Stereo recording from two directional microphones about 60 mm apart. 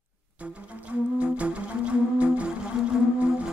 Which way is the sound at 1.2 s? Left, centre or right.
Right.